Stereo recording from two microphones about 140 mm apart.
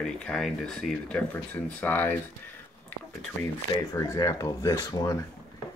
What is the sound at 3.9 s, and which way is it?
Speech, 25° left (ahead or behind).